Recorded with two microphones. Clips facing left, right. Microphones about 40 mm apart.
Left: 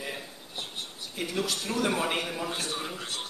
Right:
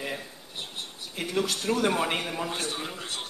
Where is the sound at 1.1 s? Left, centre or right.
Right.